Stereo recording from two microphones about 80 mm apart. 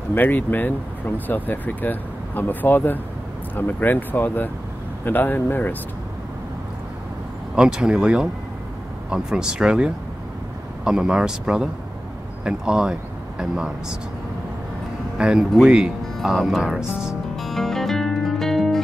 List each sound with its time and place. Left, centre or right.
0.1 s speech: left
7.5 s a man's voice: centre
15.1 s a man's voice: centre
17.4 s music: centre